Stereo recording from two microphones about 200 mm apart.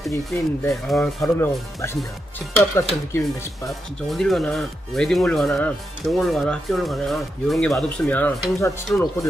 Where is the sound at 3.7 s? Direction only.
Centre (ahead or behind).